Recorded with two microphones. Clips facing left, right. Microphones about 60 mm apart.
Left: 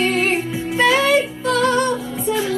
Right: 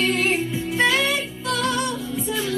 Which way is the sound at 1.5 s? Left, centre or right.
Left.